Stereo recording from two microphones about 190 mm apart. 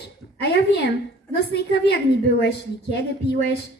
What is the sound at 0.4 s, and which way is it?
Speech, 60° left (ahead or behind).